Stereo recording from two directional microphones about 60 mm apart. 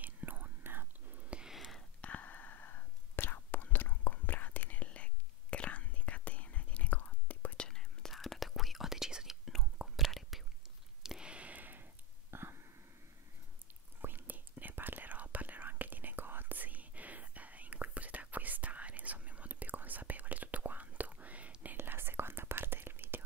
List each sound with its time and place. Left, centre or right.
0.0 s whispering: right
1.3 s a sound: centre
2.0 s whispering: left
7.6 s whispering: centre
9.4 s whispering: centre
9.8 s whispering: centre
11.0 s a sound: centre; by 12.5 s right
14.0 s whispering: right
21.7 s whispering: right